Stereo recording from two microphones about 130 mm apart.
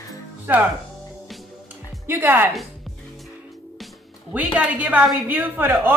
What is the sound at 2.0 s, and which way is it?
Speech, 15° right (ahead or behind).